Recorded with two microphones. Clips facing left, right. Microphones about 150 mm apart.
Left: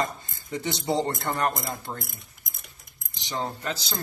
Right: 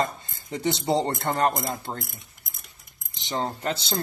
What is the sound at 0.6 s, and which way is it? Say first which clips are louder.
Speech: right 3 dB; 25° right (ahead or behind).